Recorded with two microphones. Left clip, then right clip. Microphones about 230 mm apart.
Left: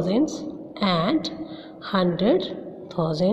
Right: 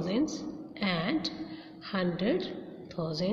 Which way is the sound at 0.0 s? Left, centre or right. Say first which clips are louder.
Left 8 dB; centre.